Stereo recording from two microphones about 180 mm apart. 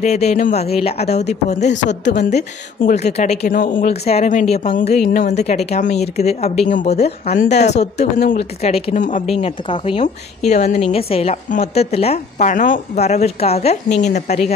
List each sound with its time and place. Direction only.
0.0 s a woman's voice: 40° left (ahead or behind)
9.4 s a woman's voice: 30° left (ahead or behind)